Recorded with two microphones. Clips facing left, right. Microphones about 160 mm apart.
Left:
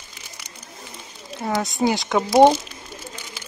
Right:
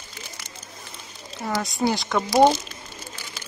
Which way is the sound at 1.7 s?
15° left (ahead or behind).